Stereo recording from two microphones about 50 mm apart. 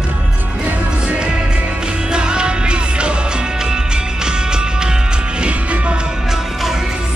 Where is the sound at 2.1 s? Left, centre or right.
Centre.